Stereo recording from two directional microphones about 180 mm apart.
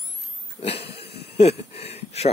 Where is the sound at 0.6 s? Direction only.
35° left (ahead or behind).